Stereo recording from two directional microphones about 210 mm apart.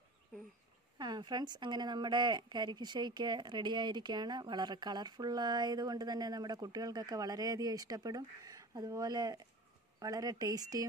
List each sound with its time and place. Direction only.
0.9 s speech: 20° right (ahead or behind)